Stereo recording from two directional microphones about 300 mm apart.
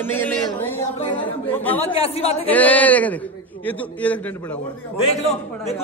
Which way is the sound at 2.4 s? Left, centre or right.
Centre.